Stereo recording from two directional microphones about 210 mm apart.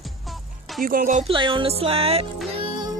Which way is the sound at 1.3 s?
25° right (ahead or behind).